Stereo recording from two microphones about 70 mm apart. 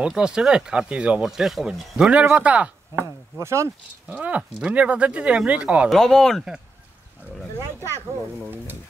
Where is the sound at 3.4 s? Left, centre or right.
Right.